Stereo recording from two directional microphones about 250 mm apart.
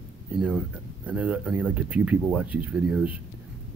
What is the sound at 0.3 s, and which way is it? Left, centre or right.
Speech, centre.